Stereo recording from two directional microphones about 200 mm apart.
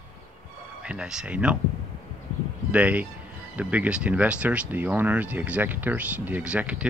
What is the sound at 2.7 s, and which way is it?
Speech, 5° right (ahead or behind).